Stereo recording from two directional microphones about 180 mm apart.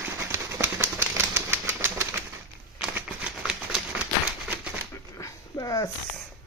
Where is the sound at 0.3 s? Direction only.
15° right (ahead or behind).